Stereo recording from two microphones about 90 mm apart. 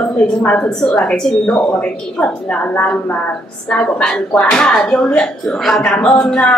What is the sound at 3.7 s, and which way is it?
Speech, 5° left (ahead or behind).